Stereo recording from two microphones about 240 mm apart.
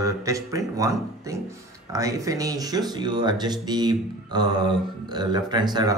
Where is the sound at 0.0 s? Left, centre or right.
Centre.